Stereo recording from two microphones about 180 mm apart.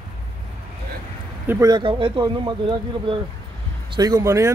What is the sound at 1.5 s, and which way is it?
Speech, 20° right (ahead or behind).